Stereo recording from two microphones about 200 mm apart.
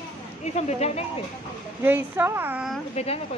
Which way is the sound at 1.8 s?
10° right (ahead or behind).